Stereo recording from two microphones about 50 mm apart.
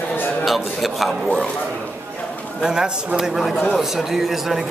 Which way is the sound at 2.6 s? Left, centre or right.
Centre.